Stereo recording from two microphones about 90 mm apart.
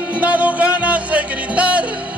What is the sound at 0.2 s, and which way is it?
Music, 15° right (ahead or behind).